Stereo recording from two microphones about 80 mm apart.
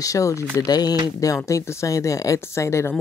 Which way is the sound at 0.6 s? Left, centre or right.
Left.